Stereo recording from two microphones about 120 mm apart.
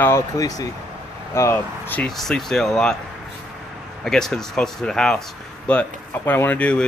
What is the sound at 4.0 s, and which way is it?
Speech, 5° left (ahead or behind).